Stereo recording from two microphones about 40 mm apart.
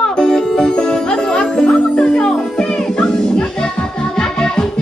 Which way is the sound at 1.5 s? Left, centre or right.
Left.